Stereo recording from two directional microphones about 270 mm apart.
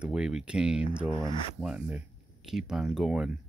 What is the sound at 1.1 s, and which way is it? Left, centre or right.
Speech, centre.